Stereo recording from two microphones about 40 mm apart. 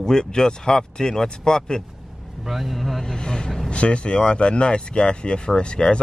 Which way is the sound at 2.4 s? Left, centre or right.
Centre.